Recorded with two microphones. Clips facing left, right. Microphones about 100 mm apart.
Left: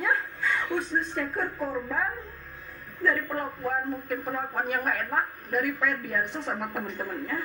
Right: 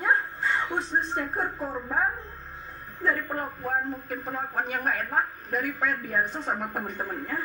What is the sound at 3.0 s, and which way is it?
A man's voice, 60° left (ahead or behind).